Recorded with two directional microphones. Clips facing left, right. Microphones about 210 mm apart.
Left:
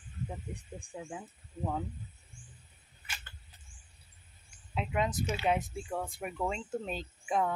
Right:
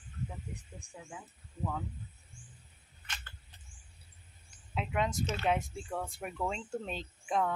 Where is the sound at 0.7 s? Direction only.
35° left (ahead or behind).